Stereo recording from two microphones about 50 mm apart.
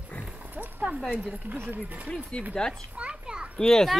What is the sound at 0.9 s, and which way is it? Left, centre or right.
Speech, right.